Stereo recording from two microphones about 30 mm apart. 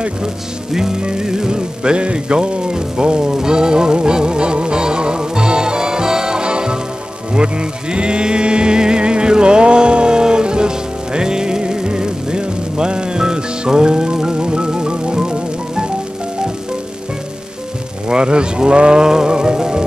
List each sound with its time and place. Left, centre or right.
1.0 s music: right
18.0 s music: right